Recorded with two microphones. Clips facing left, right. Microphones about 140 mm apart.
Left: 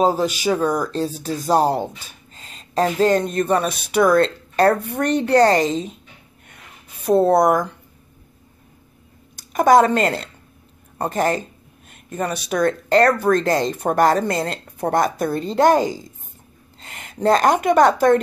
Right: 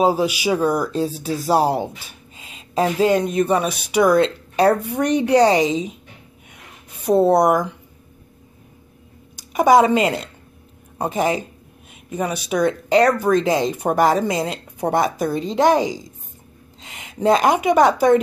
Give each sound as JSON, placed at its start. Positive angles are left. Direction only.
{"t": 0.0, "sound": "speech", "side_deg": -10}
{"t": 7.1, "sound": "speech", "side_deg": -5}
{"t": 9.5, "sound": "speech", "side_deg": -5}
{"t": 11.9, "sound": "a sound", "side_deg": -10}
{"t": 12.4, "sound": "speech", "side_deg": -10}